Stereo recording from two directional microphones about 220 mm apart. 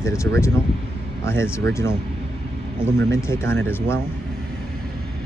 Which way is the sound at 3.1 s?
10° left (ahead or behind).